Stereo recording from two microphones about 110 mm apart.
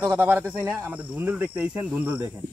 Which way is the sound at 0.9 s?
15° right (ahead or behind).